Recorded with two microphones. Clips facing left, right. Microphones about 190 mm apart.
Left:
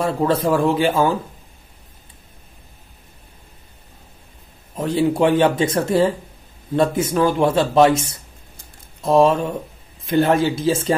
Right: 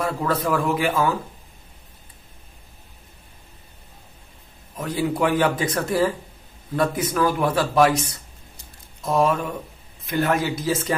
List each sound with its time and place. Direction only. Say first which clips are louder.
0.0 s speech: left 5 dB; 30° left (ahead or behind)
4.7 s speech: left 6 dB; 25° left (ahead or behind)